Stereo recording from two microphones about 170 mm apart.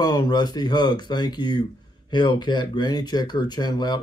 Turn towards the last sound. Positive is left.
turn(degrees=25)  # may be behind; listen again after turning